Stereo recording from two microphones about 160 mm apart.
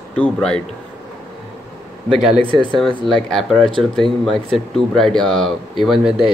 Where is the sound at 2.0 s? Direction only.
35° right (ahead or behind).